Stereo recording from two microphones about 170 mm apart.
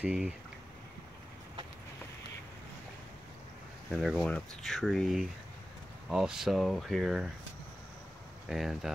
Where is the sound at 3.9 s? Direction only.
Centre (ahead or behind).